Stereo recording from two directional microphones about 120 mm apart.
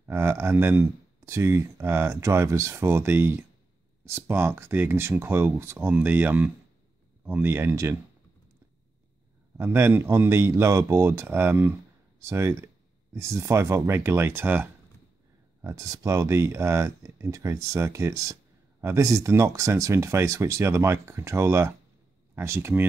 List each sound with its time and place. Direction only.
0.1 s speech: 20° right (ahead or behind)
9.6 s speech: 20° right (ahead or behind)
15.6 s speech: 30° right (ahead or behind)